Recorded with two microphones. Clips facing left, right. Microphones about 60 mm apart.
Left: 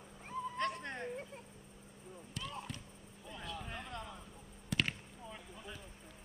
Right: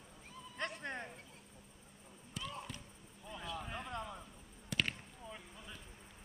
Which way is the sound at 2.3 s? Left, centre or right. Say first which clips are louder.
Even; centre.